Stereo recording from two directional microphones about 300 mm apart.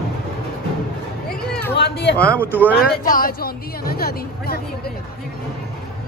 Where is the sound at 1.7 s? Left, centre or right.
Left.